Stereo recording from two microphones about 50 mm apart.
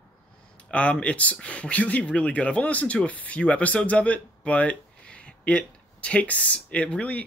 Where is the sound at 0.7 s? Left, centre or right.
Left.